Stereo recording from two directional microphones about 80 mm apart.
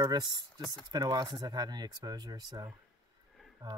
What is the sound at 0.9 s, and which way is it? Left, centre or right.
Speech, right.